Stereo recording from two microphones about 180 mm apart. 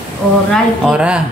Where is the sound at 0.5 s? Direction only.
5° right (ahead or behind).